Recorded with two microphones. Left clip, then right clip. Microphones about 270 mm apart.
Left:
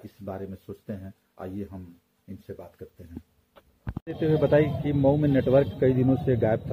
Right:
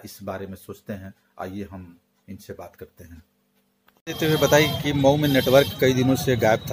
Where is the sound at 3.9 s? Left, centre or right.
Right.